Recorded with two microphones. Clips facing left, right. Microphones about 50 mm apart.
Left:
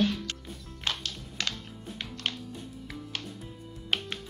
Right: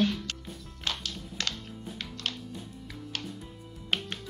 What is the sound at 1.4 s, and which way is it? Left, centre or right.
Music, centre.